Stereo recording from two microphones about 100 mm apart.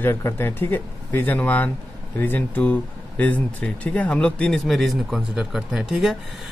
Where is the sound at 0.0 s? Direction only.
25° left (ahead or behind).